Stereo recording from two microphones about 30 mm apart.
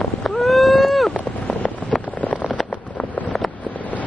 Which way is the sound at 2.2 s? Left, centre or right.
Left.